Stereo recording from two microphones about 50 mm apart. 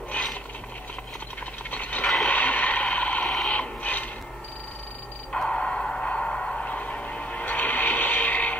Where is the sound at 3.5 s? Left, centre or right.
Left.